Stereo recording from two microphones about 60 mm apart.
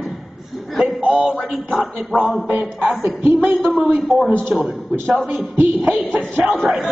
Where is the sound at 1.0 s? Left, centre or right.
Right.